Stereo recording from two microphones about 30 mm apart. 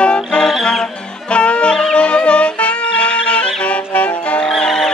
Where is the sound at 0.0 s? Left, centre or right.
Left.